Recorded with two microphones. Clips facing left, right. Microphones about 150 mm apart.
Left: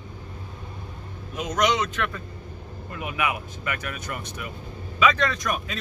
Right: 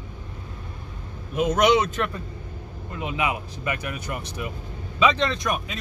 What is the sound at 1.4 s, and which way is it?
Speech, 55° right (ahead or behind).